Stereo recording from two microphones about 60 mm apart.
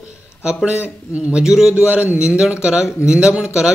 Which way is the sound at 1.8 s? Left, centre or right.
Right.